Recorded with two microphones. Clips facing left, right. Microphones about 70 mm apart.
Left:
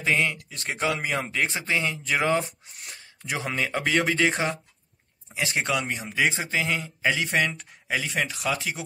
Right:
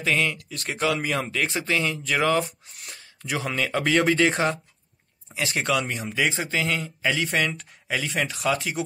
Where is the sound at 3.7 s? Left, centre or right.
Centre.